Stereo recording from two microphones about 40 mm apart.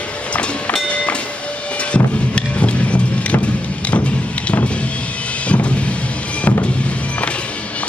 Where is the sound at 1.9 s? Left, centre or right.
Left.